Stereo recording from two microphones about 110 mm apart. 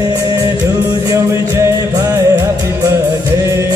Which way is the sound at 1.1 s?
25° right (ahead or behind).